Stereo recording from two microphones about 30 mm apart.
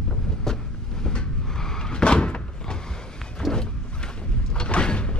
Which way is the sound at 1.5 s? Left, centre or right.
Centre.